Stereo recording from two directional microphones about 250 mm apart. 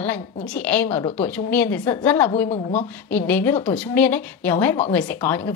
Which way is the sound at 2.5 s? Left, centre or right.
Left.